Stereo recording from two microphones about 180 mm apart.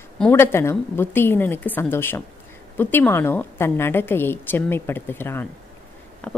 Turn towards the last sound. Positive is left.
turn(degrees=5)  # may be behind; listen again after turning